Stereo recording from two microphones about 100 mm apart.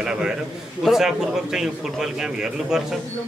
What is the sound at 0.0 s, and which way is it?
A man's voice, 10° right (ahead or behind).